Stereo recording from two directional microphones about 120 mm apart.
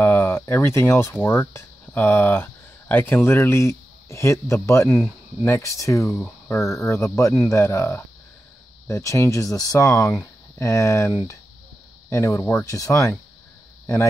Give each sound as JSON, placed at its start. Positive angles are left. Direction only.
{"t": 0.0, "sound": "speech", "side_deg": 20}